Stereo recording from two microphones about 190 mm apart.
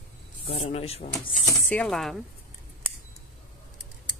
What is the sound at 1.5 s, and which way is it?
Speech, 10° left (ahead or behind).